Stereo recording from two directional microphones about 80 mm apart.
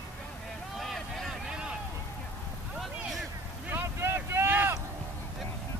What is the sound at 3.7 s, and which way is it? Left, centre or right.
Vehicle, right.